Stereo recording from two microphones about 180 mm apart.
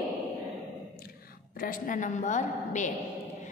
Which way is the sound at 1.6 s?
45° left (ahead or behind).